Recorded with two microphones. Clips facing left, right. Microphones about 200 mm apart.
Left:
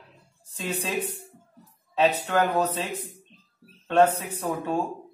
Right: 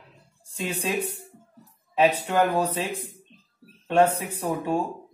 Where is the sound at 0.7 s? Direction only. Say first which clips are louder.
Right 1 dB; 10° right (ahead or behind).